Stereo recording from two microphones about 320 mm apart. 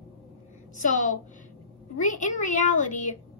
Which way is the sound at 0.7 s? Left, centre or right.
Left.